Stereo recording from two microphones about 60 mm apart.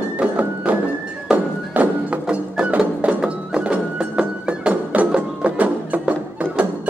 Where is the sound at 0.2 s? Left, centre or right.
Right.